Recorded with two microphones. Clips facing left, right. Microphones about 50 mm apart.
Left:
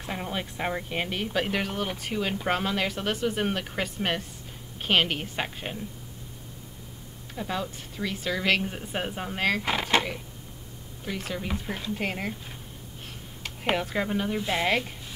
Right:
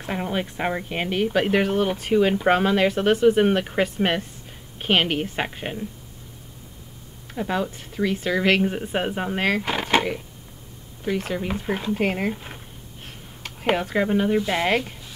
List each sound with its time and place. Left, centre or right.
0.0 s speech: centre
7.3 s speech: right
9.6 s speech: centre
9.8 s a sound: centre
11.1 s speech: centre
11.7 s speech: right
13.4 s speech: centre